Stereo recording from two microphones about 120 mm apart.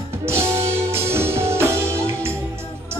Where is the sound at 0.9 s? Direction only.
20° right (ahead or behind).